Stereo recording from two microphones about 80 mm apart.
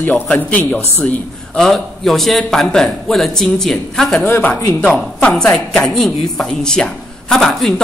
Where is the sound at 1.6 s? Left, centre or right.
Centre.